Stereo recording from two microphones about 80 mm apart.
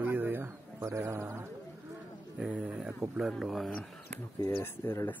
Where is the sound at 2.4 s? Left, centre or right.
Centre.